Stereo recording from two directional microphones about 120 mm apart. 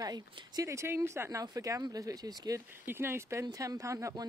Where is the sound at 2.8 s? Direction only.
20° right (ahead or behind).